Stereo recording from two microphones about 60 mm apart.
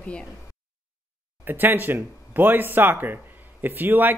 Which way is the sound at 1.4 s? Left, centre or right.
Right.